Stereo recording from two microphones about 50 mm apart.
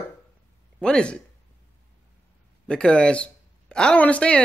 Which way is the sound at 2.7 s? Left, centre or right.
Left.